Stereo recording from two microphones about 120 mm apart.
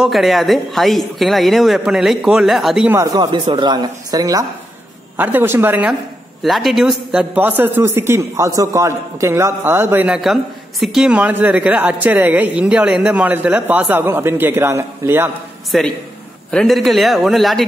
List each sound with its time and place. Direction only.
0.0 s a man's voice: centre (ahead or behind)
2.9 s speech: 25° right (ahead or behind)
5.1 s a man's voice: 15° right (ahead or behind)
6.4 s a man's voice: centre (ahead or behind)
7.3 s a man's voice: 15° right (ahead or behind)
15.7 s a man's voice: centre (ahead or behind)